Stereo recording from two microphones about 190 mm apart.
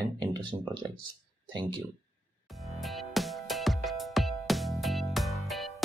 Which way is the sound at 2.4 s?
Centre (ahead or behind).